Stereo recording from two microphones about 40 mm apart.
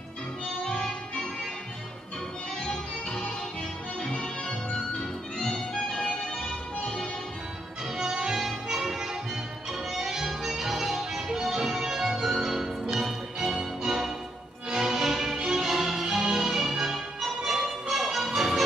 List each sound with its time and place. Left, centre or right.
0.7 s music: centre
2.6 s music: centre
8.0 s music: centre